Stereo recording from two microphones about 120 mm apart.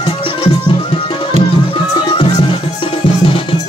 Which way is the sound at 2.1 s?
45° left (ahead or behind).